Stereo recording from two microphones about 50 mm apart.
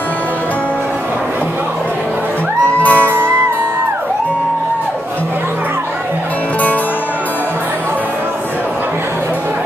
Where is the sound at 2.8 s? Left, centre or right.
Left.